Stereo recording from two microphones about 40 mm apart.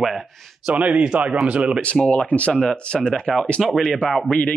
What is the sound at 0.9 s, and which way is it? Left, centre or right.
Speech, right.